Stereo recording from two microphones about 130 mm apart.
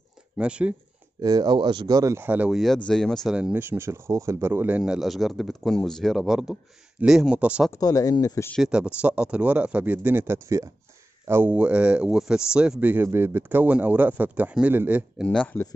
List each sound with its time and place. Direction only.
0.4 s speech: 10° right (ahead or behind)
1.2 s speech: 35° right (ahead or behind); by 2.6 s 10° right (ahead or behind)
2.6 s speech: 5° left (ahead or behind)
3.3 s speech: 10° right (ahead or behind)
7.7 s speech: 25° left (ahead or behind)
8.6 s speech: 5° right (ahead or behind)
15.2 s speech: 10° left (ahead or behind)